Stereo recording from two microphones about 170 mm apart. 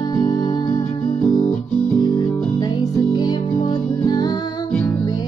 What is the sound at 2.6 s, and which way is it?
Music, 25° left (ahead or behind).